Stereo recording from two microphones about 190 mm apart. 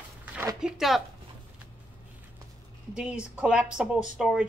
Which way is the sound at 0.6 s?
5° right (ahead or behind).